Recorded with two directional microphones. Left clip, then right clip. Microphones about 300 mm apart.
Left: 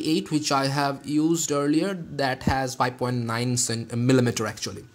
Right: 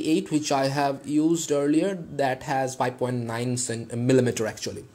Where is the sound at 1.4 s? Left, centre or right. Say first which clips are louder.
Right 1 dB; centre.